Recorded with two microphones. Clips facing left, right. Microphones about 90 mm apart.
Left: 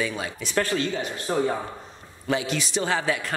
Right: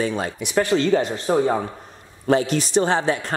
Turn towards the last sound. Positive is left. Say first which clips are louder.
# right 5 dB
turn(degrees=-30)  # may be behind; listen again after turning